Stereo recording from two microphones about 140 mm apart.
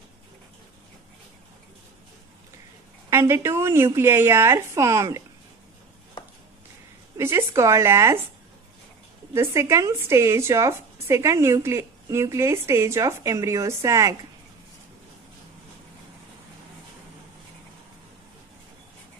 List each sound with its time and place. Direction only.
3.1 s a woman's voice: 20° right (ahead or behind)
7.2 s a woman's voice: 20° right (ahead or behind)
9.3 s a woman's voice: 20° right (ahead or behind)